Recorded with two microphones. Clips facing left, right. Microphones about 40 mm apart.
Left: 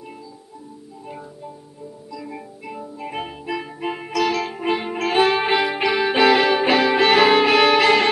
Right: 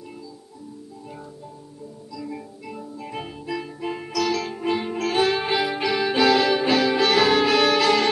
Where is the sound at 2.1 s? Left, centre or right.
Left.